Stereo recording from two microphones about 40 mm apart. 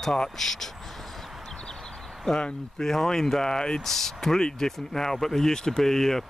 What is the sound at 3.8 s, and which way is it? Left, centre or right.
Speech, centre.